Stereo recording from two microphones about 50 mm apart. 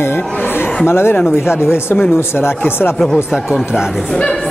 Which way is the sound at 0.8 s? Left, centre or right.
Left.